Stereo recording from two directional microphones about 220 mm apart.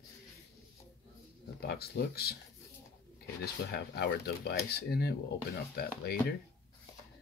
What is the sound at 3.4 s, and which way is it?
Speech, 45° left (ahead or behind).